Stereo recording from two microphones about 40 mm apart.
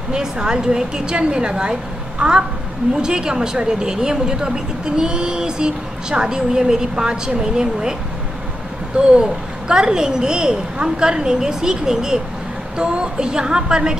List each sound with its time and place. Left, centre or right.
0.1 s speech: centre
8.9 s a woman's voice: centre